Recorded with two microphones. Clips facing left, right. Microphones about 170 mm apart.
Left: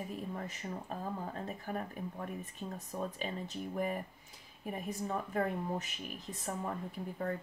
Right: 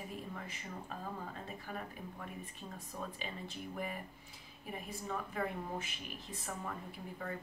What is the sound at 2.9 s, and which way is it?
Speech, 45° left (ahead or behind).